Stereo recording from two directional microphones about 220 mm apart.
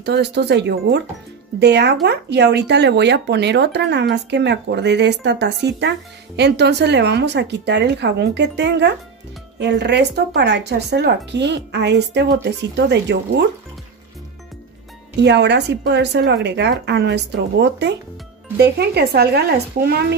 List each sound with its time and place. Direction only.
0.0 s speech: 50° right (ahead or behind)
15.2 s speech: 50° right (ahead or behind)